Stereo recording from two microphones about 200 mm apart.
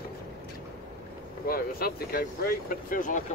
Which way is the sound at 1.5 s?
50° left (ahead or behind).